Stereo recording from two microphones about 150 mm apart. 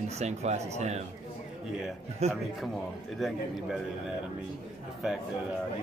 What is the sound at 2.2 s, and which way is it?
Speech, 45° right (ahead or behind).